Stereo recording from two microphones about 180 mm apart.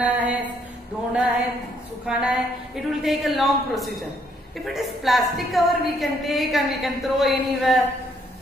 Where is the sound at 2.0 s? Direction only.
5° right (ahead or behind).